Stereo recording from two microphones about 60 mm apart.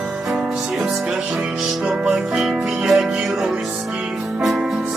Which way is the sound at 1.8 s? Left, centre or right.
Centre.